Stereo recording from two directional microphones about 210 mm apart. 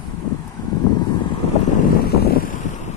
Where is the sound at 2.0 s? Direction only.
45° left (ahead or behind).